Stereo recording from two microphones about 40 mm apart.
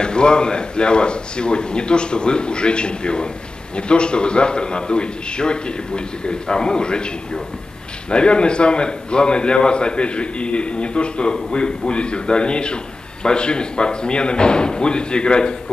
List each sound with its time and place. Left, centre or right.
0.0 s a man's voice: left